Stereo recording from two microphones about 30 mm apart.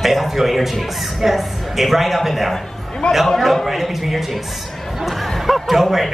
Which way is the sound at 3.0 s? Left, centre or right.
Left.